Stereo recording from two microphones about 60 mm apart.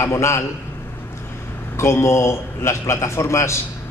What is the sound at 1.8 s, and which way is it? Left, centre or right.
A man's voice, left.